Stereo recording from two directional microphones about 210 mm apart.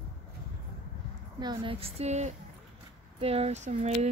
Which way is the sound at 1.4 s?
20° right (ahead or behind).